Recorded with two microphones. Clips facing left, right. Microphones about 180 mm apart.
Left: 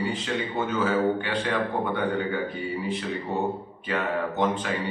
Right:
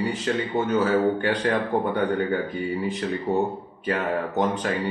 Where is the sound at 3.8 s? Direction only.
40° right (ahead or behind).